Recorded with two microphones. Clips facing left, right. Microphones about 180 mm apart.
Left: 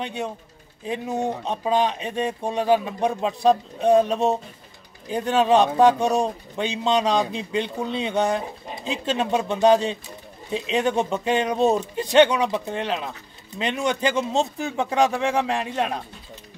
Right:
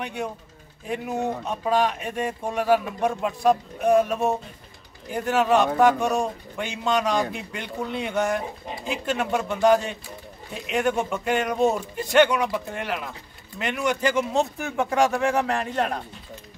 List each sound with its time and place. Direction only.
0.0 s speech: 20° left (ahead or behind)